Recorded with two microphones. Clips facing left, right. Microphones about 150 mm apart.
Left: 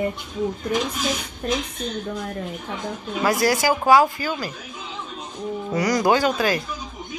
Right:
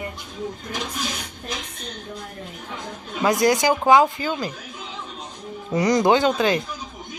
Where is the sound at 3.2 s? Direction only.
20° right (ahead or behind).